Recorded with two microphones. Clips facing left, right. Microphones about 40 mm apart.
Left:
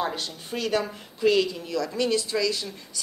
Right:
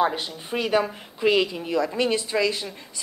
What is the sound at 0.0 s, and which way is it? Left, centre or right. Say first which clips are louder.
A woman's voice: right 6 dB; centre.